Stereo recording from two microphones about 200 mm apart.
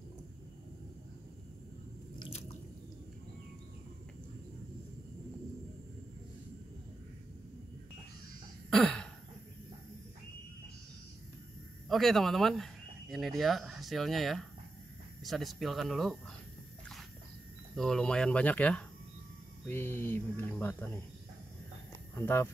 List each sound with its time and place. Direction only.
2.1 s drip: 25° left (ahead or behind)
8.6 s throat clearing: 5° left (ahead or behind)
11.9 s speech: centre (ahead or behind)
17.7 s speech: centre (ahead or behind)
22.1 s speech: 10° left (ahead or behind)